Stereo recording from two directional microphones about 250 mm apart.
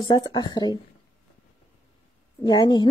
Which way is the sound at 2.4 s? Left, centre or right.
Centre.